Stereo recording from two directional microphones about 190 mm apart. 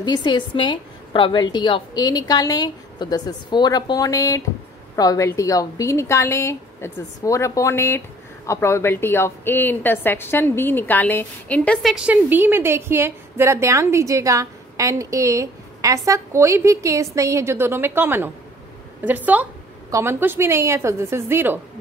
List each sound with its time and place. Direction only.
0.0 s a woman's voice: 25° left (ahead or behind); by 21.5 s 10° right (ahead or behind)